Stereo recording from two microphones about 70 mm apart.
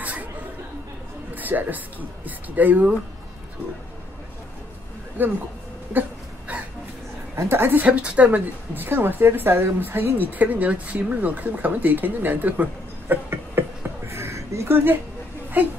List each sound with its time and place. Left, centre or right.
0.0 s chatter: right
1.3 s a woman's voice: right
5.2 s a woman's voice: right
5.9 s a sound: right
7.3 s a woman's voice: right
7.8 s a woman's voice: centre
13.1 s a sound: right
14.7 s a woman's voice: right